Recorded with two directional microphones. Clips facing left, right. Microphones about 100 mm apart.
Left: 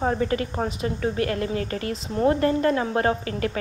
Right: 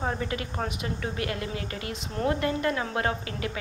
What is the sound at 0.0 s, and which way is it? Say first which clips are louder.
A woman's voice: left 7 dB; 40° left (ahead or behind).